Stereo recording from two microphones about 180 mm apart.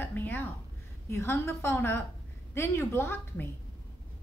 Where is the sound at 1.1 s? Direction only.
15° left (ahead or behind).